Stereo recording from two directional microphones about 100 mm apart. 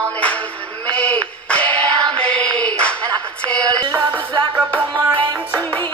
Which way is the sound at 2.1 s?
10° left (ahead or behind).